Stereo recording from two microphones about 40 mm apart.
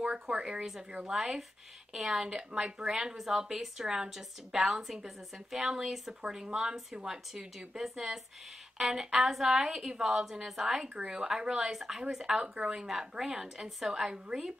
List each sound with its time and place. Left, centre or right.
0.3 s a woman's voice: centre
11.0 s a woman's voice: right